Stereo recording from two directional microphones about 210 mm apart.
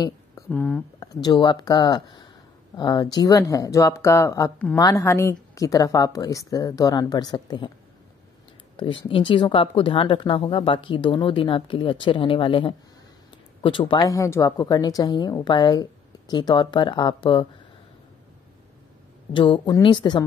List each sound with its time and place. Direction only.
0.5 s speech: 5° left (ahead or behind)
1.0 s a woman's voice: 20° left (ahead or behind)
8.7 s speech: 25° left (ahead or behind)
19.3 s speech: 25° left (ahead or behind)